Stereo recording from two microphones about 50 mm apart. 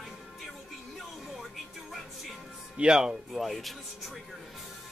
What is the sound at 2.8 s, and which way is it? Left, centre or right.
Speech, centre.